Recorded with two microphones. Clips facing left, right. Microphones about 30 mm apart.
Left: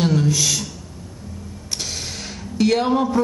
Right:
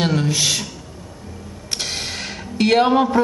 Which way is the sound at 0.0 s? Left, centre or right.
Right.